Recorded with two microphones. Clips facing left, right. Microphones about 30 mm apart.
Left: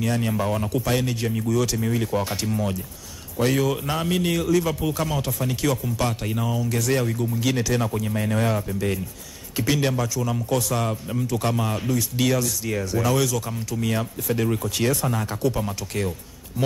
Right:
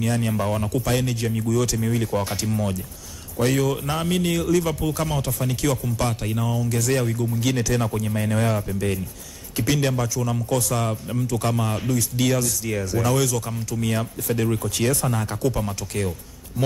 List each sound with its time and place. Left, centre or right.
0.0 s a man's voice: centre